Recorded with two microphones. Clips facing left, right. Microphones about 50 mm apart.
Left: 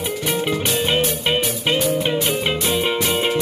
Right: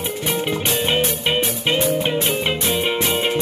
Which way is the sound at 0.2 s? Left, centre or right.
Right.